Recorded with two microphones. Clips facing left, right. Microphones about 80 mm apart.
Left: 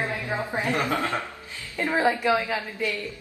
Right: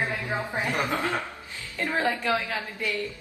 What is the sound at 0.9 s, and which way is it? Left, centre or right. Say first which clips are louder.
Speech: left 1 dB; right.